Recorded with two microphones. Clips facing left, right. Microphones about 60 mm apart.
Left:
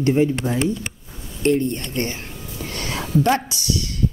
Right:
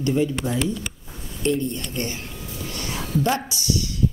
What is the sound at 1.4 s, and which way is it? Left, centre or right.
Speech, left.